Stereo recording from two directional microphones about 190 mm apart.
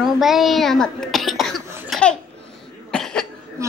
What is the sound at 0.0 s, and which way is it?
Speech, centre (ahead or behind).